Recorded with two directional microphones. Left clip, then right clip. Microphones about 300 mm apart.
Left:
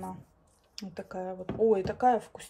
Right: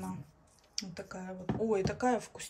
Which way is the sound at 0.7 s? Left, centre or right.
Centre.